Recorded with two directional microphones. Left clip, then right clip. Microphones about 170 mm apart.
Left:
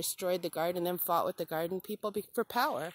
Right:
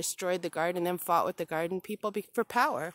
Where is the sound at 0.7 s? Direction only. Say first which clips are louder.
Right 3 dB; 25° right (ahead or behind).